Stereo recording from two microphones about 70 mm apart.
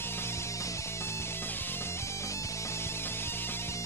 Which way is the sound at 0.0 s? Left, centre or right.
Left.